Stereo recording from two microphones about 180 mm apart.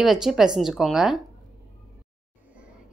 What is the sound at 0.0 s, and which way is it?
A woman's voice, centre (ahead or behind).